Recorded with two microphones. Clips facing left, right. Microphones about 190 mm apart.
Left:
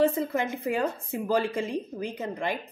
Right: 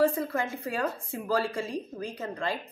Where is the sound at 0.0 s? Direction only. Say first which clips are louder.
Left 1 dB; 20° left (ahead or behind).